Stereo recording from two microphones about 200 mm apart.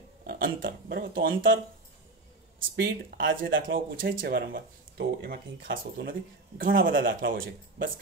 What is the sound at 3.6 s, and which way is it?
Speech, 45° right (ahead or behind).